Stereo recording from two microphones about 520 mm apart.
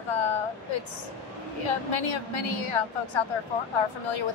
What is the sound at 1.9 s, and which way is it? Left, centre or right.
A woman's voice, left.